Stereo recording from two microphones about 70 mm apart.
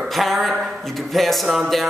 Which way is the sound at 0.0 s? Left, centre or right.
Centre.